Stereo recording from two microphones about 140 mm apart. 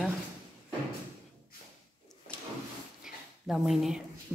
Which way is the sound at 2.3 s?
5° left (ahead or behind).